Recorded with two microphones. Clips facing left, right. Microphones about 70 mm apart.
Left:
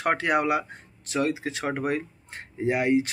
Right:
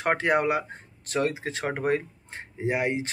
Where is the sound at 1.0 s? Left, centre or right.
Right.